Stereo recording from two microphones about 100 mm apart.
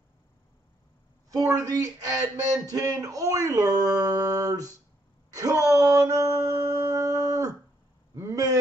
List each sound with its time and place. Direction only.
1.3 s a man's voice: 35° right (ahead or behind)
5.3 s wail: 35° right (ahead or behind)
5.7 s a sound: 35° right (ahead or behind)